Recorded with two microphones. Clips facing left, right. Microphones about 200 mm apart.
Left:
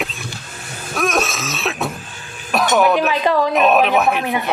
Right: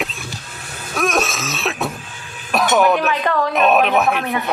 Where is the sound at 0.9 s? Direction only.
Centre (ahead or behind).